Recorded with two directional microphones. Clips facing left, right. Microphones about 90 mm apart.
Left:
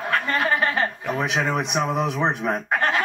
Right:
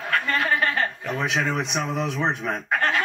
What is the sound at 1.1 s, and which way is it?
Speech, 15° left (ahead or behind).